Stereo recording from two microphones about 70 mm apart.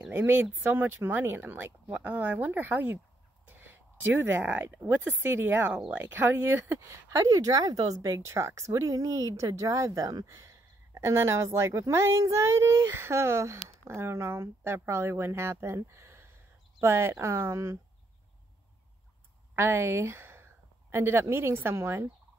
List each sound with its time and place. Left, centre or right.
0.3 s speech: right
3.4 s a sound: right
4.8 s speech: right
8.2 s speech: right
9.0 s speech: right
19.5 s speech: right